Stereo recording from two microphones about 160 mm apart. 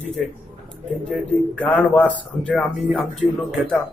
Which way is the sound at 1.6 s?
10° left (ahead or behind).